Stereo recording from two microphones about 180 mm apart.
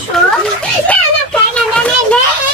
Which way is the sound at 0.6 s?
5° left (ahead or behind).